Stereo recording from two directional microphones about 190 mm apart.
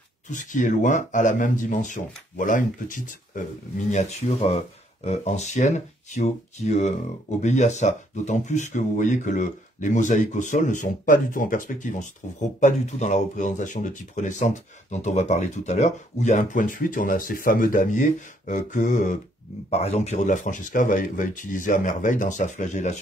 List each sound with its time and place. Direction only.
0.3 s speech: 40° left (ahead or behind)